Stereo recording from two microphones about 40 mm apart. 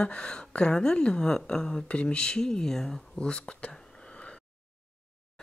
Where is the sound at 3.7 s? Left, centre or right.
Centre.